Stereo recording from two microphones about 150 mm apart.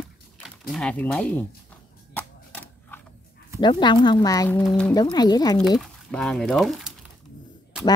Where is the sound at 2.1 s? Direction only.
10° left (ahead or behind).